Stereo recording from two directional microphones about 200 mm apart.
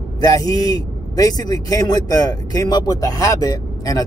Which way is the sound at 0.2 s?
20° left (ahead or behind).